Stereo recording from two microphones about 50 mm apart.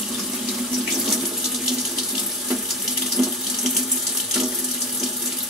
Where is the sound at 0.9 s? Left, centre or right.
Centre.